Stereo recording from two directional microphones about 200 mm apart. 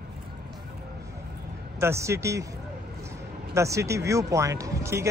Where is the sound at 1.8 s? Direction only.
15° right (ahead or behind).